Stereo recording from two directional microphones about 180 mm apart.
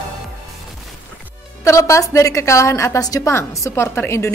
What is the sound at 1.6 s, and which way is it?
A woman's voice, 15° left (ahead or behind).